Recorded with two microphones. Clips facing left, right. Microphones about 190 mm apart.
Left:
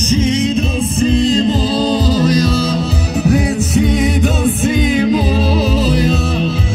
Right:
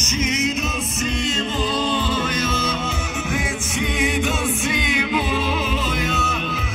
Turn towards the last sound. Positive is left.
turn(degrees=35)  # may be behind; listen again after turning